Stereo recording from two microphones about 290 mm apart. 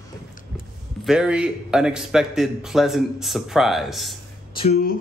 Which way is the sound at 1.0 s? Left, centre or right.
Centre.